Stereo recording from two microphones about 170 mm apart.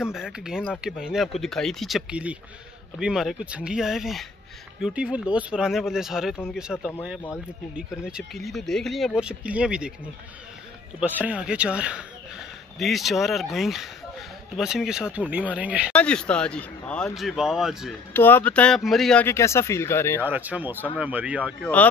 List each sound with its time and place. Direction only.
0.0 s speech: 5° right (ahead or behind)
11.0 s speech: 10° right (ahead or behind)
15.9 s speech: 5° left (ahead or behind)
18.1 s speech: 10° left (ahead or behind)
19.2 s speech: 15° left (ahead or behind)
20.2 s speech: 10° right (ahead or behind)